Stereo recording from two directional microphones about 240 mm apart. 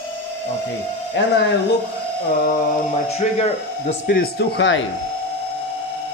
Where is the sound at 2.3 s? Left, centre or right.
Left.